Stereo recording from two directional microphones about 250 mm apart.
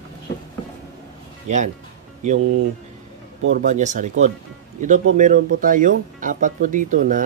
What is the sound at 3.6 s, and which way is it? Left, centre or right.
Speech, right.